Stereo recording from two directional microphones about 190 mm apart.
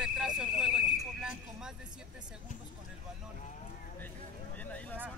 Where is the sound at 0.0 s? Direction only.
5° right (ahead or behind).